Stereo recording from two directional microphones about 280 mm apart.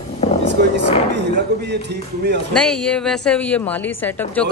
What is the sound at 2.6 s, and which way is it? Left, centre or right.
A woman's voice, centre.